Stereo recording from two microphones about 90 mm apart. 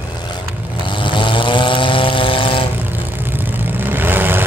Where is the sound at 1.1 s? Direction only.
65° left (ahead or behind).